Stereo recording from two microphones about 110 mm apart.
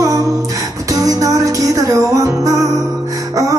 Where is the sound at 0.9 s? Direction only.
30° right (ahead or behind).